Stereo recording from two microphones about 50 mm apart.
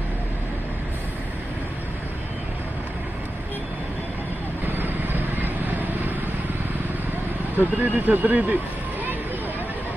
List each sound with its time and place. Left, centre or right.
4.7 s vehicle: right
7.5 s speech: right